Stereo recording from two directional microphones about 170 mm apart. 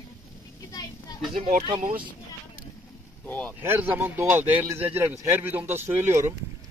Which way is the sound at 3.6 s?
10° right (ahead or behind).